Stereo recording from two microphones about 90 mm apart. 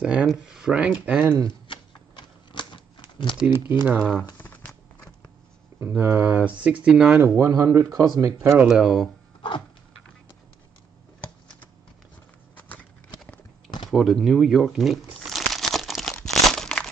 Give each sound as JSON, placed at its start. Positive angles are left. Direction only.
{"t": 0.0, "sound": "speech", "side_deg": -10}
{"t": 1.5, "sound": "typewriter", "side_deg": 60}
{"t": 3.8, "sound": "speech", "side_deg": -10}
{"t": 4.4, "sound": "a sound", "side_deg": 20}
{"t": 5.8, "sound": "speech", "side_deg": -25}
{"t": 7.2, "sound": "speech", "side_deg": -35}
{"t": 8.6, "sound": "speech", "side_deg": -5}
{"t": 12.5, "sound": "a sound", "side_deg": 20}
{"t": 13.8, "sound": "crumpling", "side_deg": 0}